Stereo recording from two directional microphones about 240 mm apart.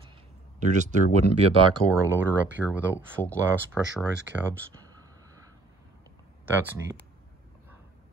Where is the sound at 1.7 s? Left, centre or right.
Centre.